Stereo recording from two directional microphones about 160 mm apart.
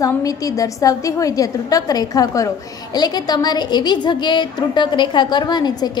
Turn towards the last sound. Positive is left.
turn(degrees=25)  # may be behind; listen again after turning